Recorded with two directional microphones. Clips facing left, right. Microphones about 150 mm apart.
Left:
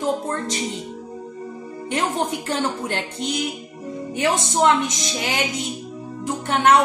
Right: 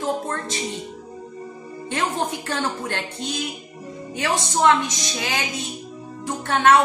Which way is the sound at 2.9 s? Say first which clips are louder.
Left 3 dB; 20° left (ahead or behind).